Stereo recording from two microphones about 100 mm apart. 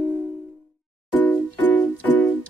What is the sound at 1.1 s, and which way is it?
Music, 15° left (ahead or behind).